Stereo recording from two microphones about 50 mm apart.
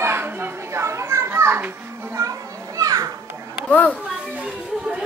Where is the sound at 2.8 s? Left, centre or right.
Right.